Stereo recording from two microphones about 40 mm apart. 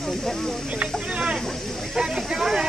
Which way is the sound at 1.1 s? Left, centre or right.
Right.